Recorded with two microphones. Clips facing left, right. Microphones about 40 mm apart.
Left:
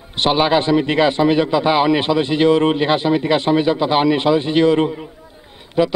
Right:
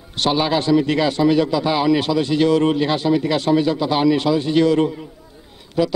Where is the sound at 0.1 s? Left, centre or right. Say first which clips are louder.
Left 3 dB; left.